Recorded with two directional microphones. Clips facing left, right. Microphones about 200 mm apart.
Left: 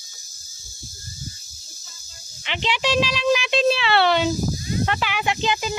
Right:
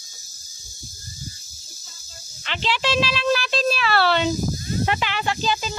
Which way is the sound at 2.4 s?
15° left (ahead or behind).